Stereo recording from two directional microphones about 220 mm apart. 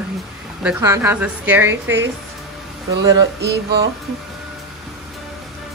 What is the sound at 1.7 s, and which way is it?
Speech, 55° right (ahead or behind).